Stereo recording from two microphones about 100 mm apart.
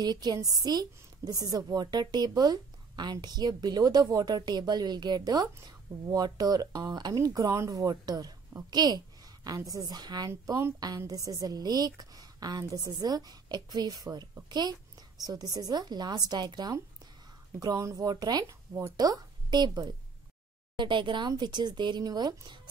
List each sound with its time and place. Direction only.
0.0 s a woman's voice: 45° right (ahead or behind)